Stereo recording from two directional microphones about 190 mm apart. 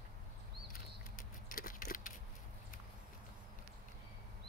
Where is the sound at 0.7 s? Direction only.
45° left (ahead or behind).